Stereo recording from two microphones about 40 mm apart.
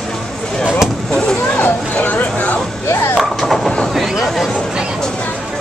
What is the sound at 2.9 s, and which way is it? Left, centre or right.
Chop, left.